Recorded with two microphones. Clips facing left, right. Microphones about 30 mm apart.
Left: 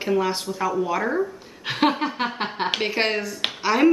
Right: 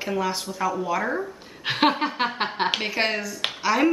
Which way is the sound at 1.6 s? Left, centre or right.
Centre.